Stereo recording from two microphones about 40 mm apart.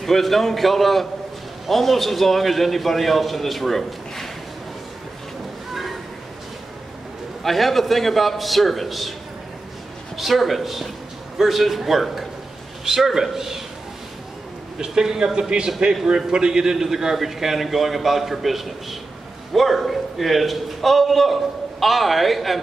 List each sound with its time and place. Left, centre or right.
0.0 s a man's voice: centre
7.4 s a man's voice: centre
10.1 s a man's voice: centre
14.8 s a man's voice: centre